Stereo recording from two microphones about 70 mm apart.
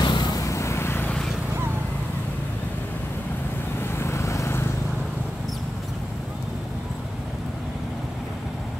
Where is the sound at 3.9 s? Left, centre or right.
Left.